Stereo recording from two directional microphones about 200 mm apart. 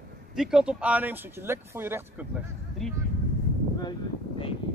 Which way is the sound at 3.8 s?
25° left (ahead or behind).